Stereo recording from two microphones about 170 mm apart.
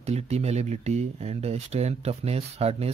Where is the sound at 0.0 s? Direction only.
40° right (ahead or behind).